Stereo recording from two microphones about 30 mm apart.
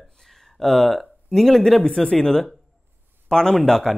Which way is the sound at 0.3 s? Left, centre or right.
Centre.